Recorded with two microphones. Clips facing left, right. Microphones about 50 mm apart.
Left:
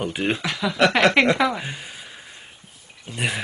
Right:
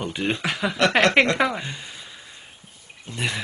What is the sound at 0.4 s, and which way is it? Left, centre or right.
Speech, centre.